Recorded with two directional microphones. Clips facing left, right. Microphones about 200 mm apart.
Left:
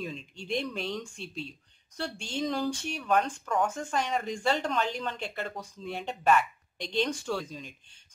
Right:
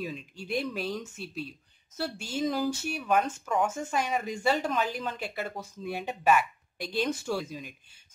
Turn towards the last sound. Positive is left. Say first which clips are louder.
# right 1 dB
turn(degrees=-10)  # may be behind; listen again after turning